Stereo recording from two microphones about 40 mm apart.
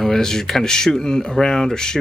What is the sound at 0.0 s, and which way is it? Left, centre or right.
Speech, centre.